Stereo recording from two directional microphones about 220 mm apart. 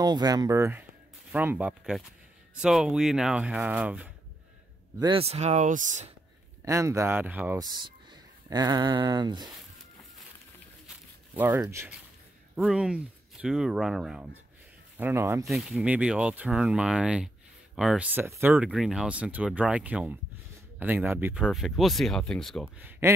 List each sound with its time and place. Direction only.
0.0 s speech: 15° right (ahead or behind)
4.9 s speech: 20° right (ahead or behind)
6.6 s speech: 15° right (ahead or behind)
11.3 s speech: 10° right (ahead or behind)
15.4 s speech: centre (ahead or behind)